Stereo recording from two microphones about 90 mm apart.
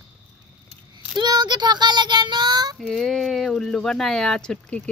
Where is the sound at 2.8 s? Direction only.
5° left (ahead or behind).